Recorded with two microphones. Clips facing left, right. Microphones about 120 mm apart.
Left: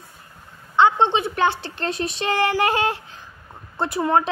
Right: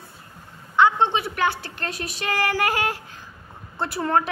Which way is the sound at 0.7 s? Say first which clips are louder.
Left 2 dB; 25° left (ahead or behind).